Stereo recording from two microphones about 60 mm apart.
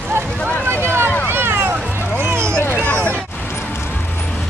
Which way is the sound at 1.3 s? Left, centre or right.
Right.